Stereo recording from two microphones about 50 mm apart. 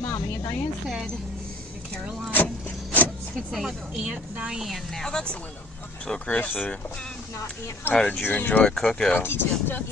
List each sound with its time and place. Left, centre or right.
0.1 s speech: left
2.4 s rub: left
3.3 s speech: centre
4.9 s speech: centre
6.2 s speech: left
7.9 s speech: centre
8.3 s speech: left
8.6 s speech: centre
9.2 s speech: left